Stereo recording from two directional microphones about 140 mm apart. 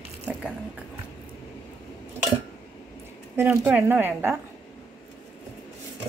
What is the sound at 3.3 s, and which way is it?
A woman's voice, 15° right (ahead or behind).